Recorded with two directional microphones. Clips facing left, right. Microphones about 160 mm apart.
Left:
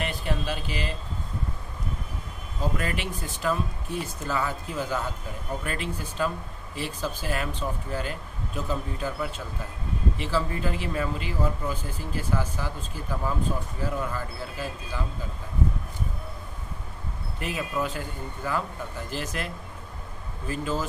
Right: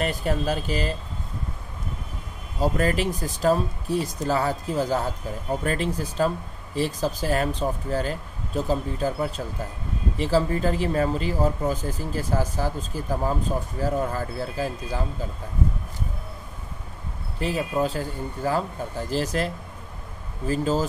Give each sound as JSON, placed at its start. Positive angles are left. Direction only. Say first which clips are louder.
{"t": 0.0, "sound": "speech", "louder": "right 5 dB", "side_deg": -40}
{"t": 2.6, "sound": "speech", "louder": "right 7 dB", "side_deg": -40}
{"t": 17.4, "sound": "speech", "louder": "right 5 dB", "side_deg": -30}